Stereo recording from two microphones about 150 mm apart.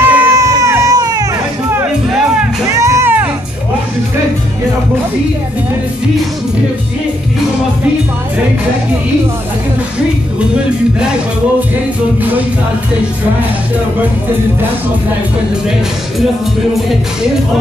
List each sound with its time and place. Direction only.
0.0 s crowd: 15° right (ahead or behind)
0.5 s a sound: 20° right (ahead or behind)
2.7 s music: 20° right (ahead or behind)